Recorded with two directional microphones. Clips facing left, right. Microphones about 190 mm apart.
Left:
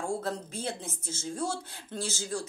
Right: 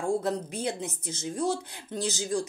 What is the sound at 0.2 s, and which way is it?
Speech, 15° right (ahead or behind).